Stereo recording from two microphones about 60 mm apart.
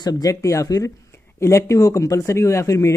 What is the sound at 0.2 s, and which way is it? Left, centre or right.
Speech, left.